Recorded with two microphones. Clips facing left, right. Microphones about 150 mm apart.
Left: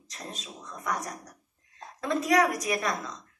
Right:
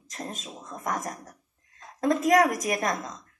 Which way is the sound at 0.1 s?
45° right (ahead or behind).